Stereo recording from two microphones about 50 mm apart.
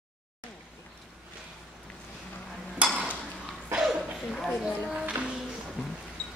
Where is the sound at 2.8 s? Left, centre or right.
Right.